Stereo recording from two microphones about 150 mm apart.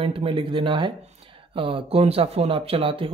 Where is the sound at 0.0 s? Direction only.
40° right (ahead or behind).